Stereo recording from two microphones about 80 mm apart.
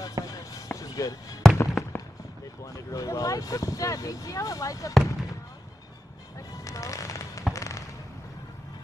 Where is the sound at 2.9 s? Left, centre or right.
Left.